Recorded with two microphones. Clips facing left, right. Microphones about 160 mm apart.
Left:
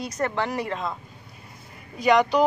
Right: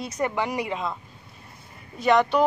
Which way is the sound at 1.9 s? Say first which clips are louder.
Left 1 dB; centre (ahead or behind).